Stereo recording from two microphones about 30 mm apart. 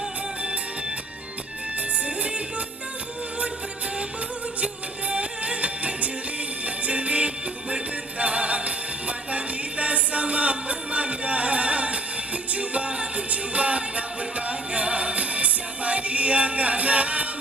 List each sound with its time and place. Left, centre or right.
2.0 s music: right
4.6 s music: right